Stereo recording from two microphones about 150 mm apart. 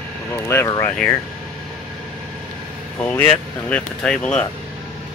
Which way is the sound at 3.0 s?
10° left (ahead or behind).